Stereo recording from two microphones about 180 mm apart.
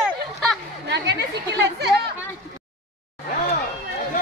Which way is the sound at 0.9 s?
70° right (ahead or behind).